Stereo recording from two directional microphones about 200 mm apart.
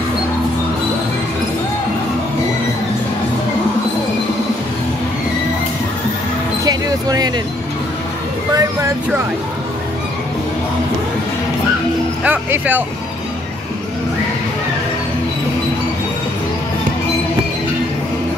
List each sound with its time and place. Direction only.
6.6 s basketball bounce: 20° right (ahead or behind)
8.5 s speech: 15° right (ahead or behind)
12.2 s speech: 10° right (ahead or behind)